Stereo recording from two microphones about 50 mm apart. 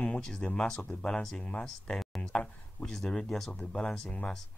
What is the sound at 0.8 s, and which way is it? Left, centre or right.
Speech, left.